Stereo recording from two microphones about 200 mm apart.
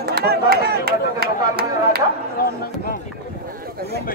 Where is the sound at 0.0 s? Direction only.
50° right (ahead or behind).